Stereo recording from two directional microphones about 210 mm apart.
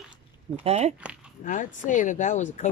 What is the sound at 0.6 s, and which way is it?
Speech, 30° right (ahead or behind).